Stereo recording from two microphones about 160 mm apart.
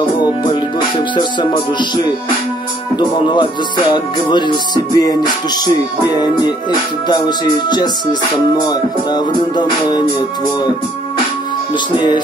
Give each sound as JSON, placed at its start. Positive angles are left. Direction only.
{"t": 0.1, "sound": "music", "side_deg": 25}
{"t": 3.0, "sound": "music", "side_deg": 30}